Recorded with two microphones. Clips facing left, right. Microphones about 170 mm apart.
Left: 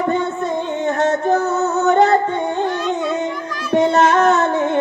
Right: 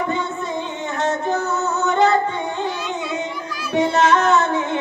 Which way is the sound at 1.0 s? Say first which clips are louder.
Left 3 dB; 55° left (ahead or behind).